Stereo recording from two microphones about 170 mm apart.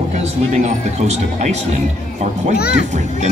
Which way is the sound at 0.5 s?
40° right (ahead or behind).